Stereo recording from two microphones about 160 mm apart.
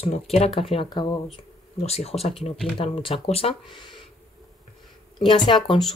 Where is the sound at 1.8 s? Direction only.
40° left (ahead or behind).